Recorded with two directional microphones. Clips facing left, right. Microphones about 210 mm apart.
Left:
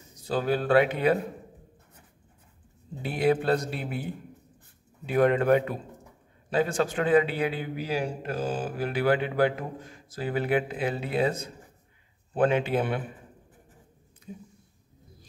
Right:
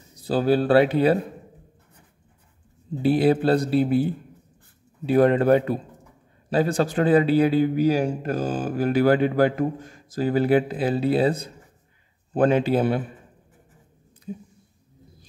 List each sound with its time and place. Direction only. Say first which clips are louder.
0.2 s a man's voice: right 6 dB; 35° right (ahead or behind)
3.0 s a man's voice: right 6 dB; 35° right (ahead or behind)
14.3 s a man's voice: right 8 dB; 35° right (ahead or behind)